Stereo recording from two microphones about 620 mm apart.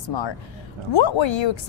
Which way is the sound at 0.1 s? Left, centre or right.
Left.